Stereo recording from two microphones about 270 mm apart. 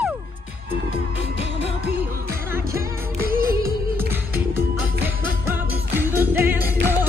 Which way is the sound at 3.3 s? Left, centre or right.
Right.